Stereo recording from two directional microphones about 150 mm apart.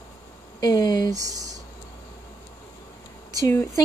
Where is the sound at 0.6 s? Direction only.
25° left (ahead or behind).